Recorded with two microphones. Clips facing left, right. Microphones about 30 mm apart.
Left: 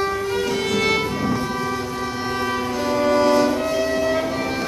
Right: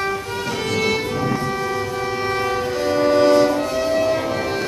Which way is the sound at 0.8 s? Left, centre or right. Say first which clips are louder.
Even; centre.